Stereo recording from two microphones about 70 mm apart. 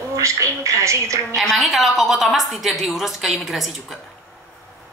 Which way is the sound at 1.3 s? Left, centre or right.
Centre.